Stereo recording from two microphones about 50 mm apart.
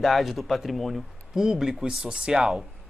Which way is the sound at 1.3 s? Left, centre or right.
Centre.